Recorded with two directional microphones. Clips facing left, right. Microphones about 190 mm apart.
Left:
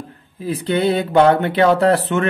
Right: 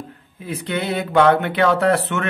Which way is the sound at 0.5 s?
35° left (ahead or behind).